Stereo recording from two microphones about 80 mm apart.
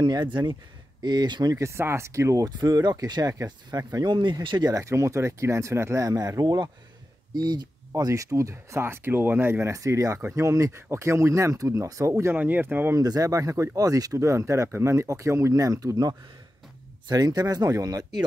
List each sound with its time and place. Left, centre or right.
0.0 s speech: right
1.6 s speech: right
2.6 s speech: right
4.6 s speech: right
6.4 s speech: right
12.4 s speech: right
12.9 s speech: right
14.1 s speech: right